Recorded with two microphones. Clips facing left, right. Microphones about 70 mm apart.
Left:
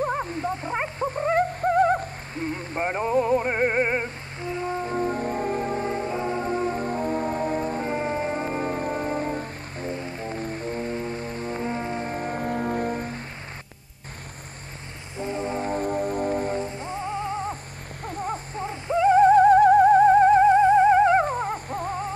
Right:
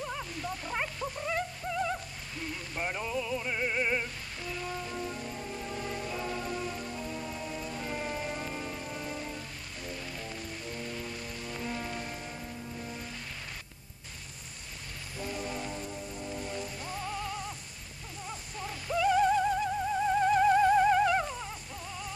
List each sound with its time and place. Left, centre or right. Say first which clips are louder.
0.0 s music: left 11 dB; left
15.1 s music: left 9 dB; left
18.0 s music: left 13 dB; left